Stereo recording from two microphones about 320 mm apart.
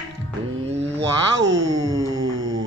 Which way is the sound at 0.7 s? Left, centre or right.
Centre.